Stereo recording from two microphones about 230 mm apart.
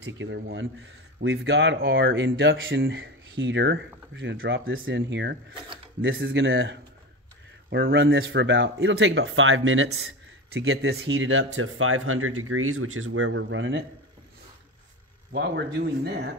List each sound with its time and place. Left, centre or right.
0.0 s speech: right
15.3 s speech: right